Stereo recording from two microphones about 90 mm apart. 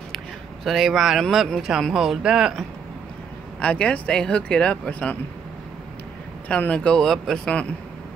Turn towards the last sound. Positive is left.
turn(degrees=10)  # may be behind; listen again after turning